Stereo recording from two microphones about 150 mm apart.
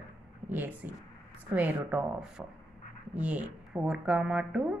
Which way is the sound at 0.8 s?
10° right (ahead or behind).